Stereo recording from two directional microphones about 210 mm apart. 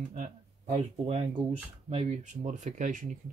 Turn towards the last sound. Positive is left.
turn(degrees=-35)  # may be behind; listen again after turning